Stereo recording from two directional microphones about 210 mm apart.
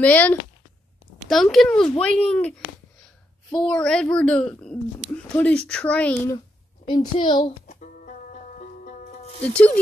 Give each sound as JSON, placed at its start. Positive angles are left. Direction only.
{"t": 0.0, "sound": "speech", "side_deg": 10}
{"t": 3.6, "sound": "speech", "side_deg": 5}
{"t": 6.9, "sound": "a woman's voice", "side_deg": 20}
{"t": 7.6, "sound": "music", "side_deg": 35}
{"t": 9.4, "sound": "speech", "side_deg": 5}